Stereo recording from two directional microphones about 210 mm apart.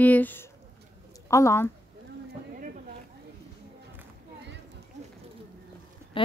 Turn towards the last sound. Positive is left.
turn(degrees=25)  # may be behind; listen again after turning